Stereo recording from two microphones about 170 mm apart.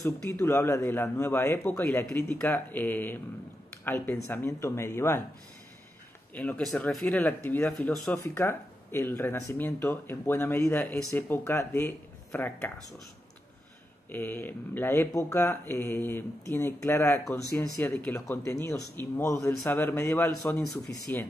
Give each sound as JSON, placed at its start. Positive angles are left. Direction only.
{"t": 0.3, "sound": "speech", "side_deg": 15}
{"t": 6.3, "sound": "speech", "side_deg": 5}
{"t": 8.2, "sound": "speech", "side_deg": 15}
{"t": 14.1, "sound": "speech", "side_deg": 10}
{"t": 20.5, "sound": "speech", "side_deg": 0}